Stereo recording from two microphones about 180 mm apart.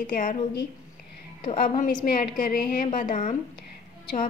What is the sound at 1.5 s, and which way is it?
A woman's voice, 50° left (ahead or behind).